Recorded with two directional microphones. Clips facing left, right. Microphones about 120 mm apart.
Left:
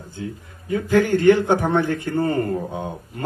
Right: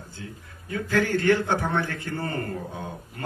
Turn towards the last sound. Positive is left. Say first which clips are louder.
# left 6 dB
turn(degrees=20)  # may be behind; listen again after turning